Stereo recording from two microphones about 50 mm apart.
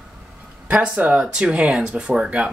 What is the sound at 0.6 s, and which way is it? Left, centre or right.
Speech, right.